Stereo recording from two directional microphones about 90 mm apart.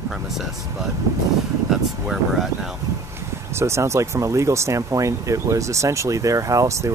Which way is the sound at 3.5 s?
30° right (ahead or behind).